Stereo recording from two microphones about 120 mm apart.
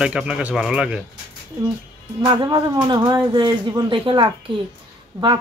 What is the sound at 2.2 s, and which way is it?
Speech, 35° right (ahead or behind).